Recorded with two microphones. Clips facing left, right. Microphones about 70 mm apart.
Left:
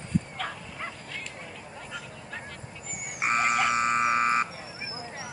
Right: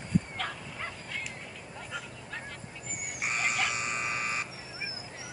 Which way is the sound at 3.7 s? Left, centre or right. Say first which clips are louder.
Left 10 dB; left.